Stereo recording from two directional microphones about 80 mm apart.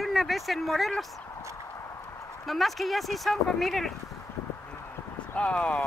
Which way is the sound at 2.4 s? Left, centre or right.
Centre.